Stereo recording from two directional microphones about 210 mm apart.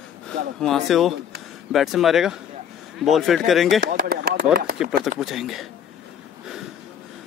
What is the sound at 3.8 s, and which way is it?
Speech, 45° right (ahead or behind).